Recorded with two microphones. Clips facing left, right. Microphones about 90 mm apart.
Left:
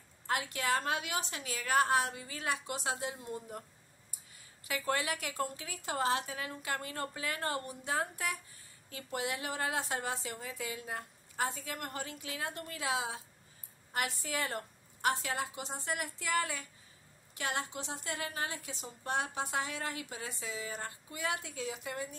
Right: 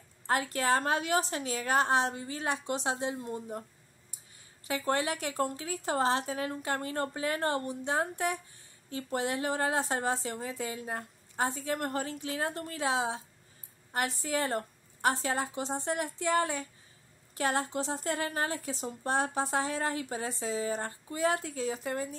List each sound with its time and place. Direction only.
0.3 s a woman's voice: 40° right (ahead or behind)
4.6 s a woman's voice: 35° right (ahead or behind)